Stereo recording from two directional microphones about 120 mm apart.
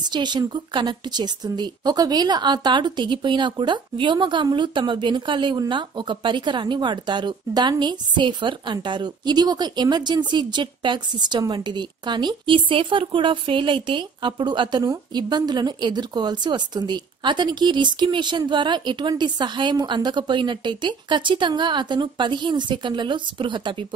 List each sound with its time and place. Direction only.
0.0 s a woman's voice: 40° right (ahead or behind)